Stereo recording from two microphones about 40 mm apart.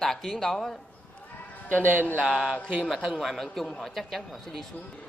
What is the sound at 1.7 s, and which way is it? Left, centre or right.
Speech, left.